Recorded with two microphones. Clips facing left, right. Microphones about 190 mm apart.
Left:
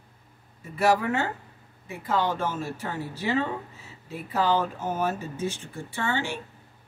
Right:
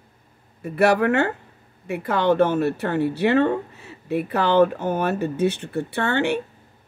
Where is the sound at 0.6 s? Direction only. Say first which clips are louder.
Right 5 dB; 65° right (ahead or behind).